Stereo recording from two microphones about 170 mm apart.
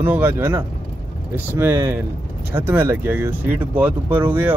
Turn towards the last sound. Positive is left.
turn(degrees=-10)  # may be behind; listen again after turning